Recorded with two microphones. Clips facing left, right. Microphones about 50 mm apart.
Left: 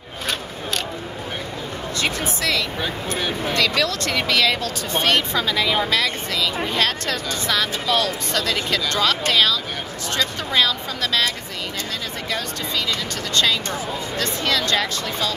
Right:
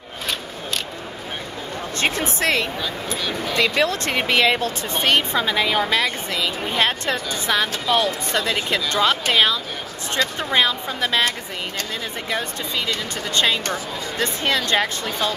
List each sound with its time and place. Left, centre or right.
2.0 s speech: right
3.2 s speech: left
3.5 s speech: right
12.3 s speech: right